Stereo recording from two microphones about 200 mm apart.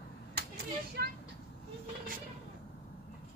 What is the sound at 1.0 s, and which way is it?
Speech, 55° right (ahead or behind).